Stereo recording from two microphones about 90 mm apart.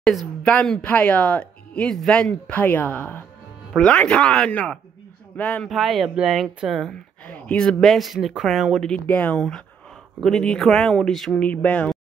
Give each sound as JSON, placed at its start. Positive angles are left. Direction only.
{"t": 0.0, "sound": "a sound", "side_deg": 5}
{"t": 0.5, "sound": "speech", "side_deg": 15}
{"t": 5.7, "sound": "speech", "side_deg": 0}
{"t": 6.9, "sound": "speech", "side_deg": 15}
{"t": 9.0, "sound": "speech", "side_deg": 15}
{"t": 11.4, "sound": "speech", "side_deg": 15}